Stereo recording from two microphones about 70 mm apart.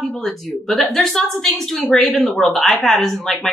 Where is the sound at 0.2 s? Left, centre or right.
Centre.